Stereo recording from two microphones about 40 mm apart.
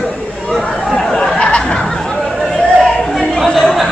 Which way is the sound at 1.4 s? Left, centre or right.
Left.